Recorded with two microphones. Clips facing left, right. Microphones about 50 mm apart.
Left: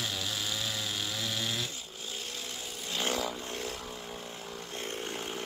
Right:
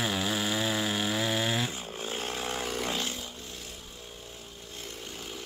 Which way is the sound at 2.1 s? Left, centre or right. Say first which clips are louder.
Right 7 dB; right.